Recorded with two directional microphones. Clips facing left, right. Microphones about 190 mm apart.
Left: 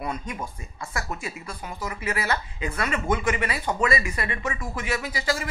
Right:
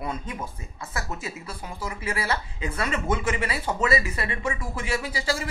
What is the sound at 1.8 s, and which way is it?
A man's voice, 30° right (ahead or behind).